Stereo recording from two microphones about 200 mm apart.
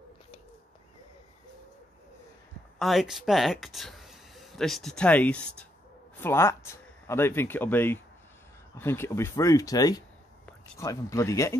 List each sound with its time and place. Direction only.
2.8 s speech: centre (ahead or behind); by 11.5 s 15° left (ahead or behind)